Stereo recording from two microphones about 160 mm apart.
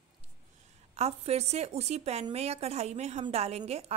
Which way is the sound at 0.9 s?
40° right (ahead or behind).